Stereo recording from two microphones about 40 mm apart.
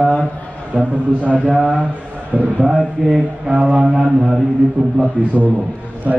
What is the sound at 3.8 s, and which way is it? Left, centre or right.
Speech, centre.